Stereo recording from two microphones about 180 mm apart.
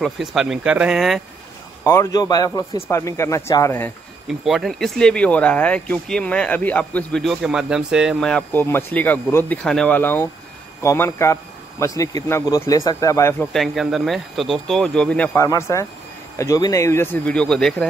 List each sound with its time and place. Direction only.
0.0 s speech: centre (ahead or behind)
1.9 s a man's voice: 20° left (ahead or behind)
4.3 s a man's voice: centre (ahead or behind); by 13.5 s 15° left (ahead or behind)
13.5 s a man's voice: centre (ahead or behind)